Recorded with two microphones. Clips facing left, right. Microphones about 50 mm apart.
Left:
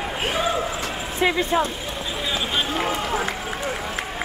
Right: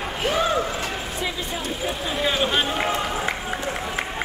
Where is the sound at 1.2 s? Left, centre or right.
Left.